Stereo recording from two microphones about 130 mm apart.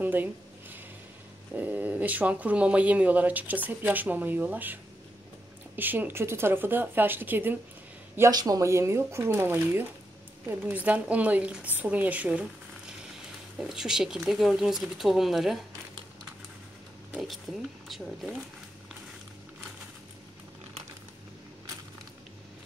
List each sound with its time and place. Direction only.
0.0 s a sound: 15° right (ahead or behind)
1.5 s speech: 15° right (ahead or behind)
5.8 s speech: 15° right (ahead or behind)
8.2 s speech: 30° right (ahead or behind); by 15.6 s centre (ahead or behind)
17.1 s speech: centre (ahead or behind)